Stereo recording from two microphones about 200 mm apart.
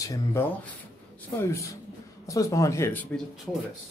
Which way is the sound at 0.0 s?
15° left (ahead or behind).